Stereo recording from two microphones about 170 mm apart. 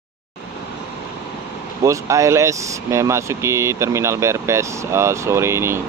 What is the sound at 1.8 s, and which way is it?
Speech, 15° right (ahead or behind).